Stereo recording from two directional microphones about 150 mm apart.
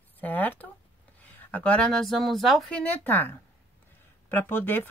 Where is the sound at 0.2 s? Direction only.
10° left (ahead or behind).